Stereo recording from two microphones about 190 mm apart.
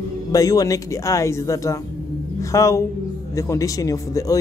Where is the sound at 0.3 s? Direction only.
20° left (ahead or behind).